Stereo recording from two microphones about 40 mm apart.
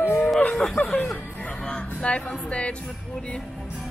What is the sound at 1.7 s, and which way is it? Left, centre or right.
Music, left.